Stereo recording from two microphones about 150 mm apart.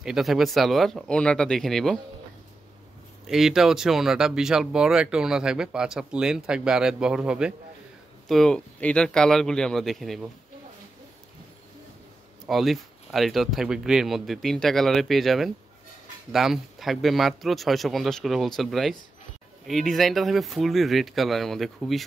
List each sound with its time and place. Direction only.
0.0 s speech: centre (ahead or behind)
3.3 s speech: 5° right (ahead or behind)
12.4 s speech: centre (ahead or behind)